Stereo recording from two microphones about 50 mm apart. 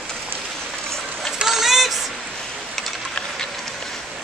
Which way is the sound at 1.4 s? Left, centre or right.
Centre.